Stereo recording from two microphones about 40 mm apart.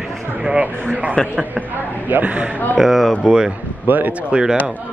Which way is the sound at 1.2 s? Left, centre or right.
Left.